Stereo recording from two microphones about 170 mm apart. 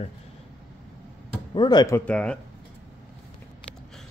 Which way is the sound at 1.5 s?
25° left (ahead or behind).